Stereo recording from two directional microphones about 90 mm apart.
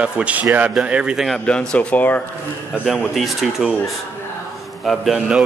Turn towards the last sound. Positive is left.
turn(degrees=-5)  # may be behind; listen again after turning